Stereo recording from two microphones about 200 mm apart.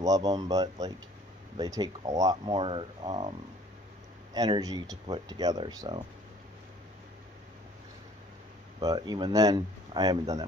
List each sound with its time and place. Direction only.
0.0 s speech: 20° right (ahead or behind)
8.7 s speech: 20° right (ahead or behind)